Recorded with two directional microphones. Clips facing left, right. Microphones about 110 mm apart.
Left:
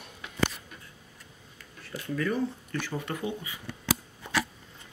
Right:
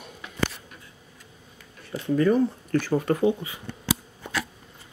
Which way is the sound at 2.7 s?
45° right (ahead or behind).